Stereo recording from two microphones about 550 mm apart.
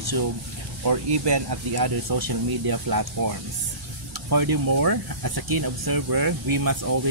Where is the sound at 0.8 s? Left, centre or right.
Right.